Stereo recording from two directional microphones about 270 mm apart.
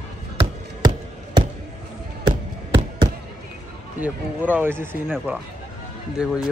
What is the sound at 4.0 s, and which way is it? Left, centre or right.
Speech, centre.